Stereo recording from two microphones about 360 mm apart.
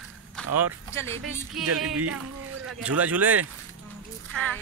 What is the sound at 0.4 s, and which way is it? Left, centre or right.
Run, centre.